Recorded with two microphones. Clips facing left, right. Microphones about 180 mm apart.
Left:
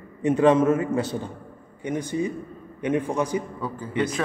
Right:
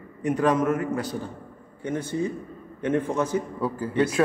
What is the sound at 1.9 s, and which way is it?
A man's voice, 15° left (ahead or behind).